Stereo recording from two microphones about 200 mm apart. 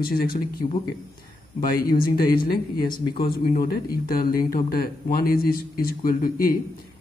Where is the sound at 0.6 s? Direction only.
35° left (ahead or behind).